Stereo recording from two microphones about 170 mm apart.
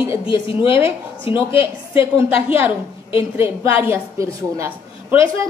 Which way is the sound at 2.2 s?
10° right (ahead or behind).